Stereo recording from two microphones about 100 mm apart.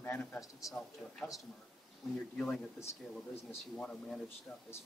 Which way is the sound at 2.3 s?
10° left (ahead or behind).